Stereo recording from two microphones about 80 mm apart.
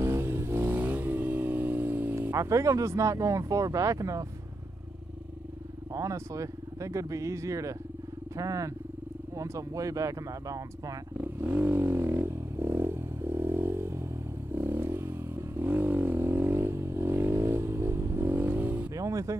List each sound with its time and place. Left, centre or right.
0.0 s vehicle: right
2.3 s speech: right
5.9 s speech: right
11.1 s vehicle: right
18.9 s speech: right